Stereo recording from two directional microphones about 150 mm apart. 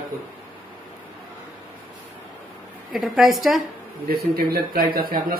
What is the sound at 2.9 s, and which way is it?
Speech, centre (ahead or behind).